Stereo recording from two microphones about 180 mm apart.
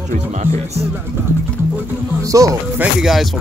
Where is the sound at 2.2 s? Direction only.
20° right (ahead or behind).